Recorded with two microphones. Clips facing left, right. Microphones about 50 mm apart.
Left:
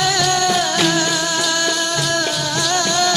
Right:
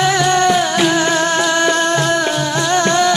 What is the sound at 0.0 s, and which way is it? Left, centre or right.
Music, right.